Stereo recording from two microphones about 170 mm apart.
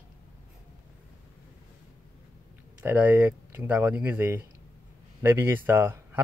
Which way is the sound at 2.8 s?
10° right (ahead or behind).